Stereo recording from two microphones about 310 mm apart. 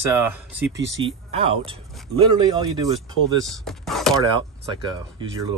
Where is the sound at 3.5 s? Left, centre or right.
Centre.